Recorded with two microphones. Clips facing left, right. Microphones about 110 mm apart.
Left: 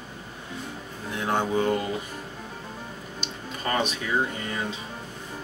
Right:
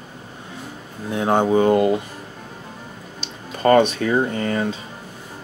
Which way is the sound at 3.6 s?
60° right (ahead or behind).